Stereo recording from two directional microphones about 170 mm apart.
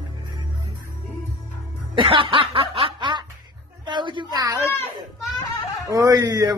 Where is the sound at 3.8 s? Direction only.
25° right (ahead or behind).